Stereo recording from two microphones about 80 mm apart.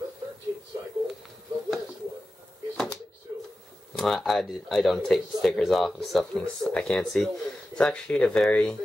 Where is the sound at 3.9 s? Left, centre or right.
Centre.